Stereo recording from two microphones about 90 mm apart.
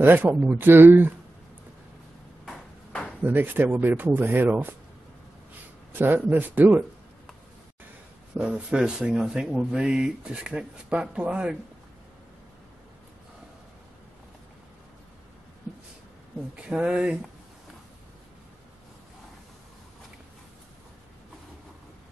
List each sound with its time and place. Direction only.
0.0 s speech: 20° right (ahead or behind)
3.3 s speech: 20° right (ahead or behind)
5.9 s speech: 20° right (ahead or behind)
8.4 s speech: 10° right (ahead or behind)
16.5 s speech: 10° right (ahead or behind)